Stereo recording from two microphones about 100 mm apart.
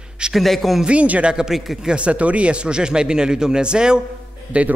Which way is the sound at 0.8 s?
15° right (ahead or behind).